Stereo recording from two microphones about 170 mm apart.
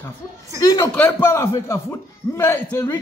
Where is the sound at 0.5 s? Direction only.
20° left (ahead or behind).